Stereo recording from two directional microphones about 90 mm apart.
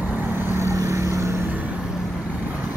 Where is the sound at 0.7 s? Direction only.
35° right (ahead or behind).